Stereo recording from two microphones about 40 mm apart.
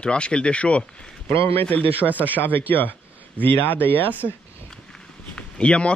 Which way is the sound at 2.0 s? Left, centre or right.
Centre.